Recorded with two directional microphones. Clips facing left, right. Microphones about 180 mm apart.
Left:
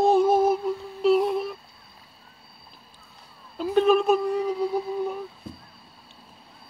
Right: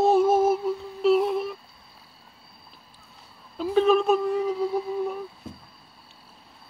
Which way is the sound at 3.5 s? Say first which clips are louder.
Even; centre (ahead or behind).